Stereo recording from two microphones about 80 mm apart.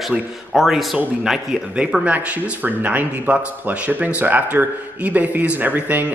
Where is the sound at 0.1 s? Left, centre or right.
Centre.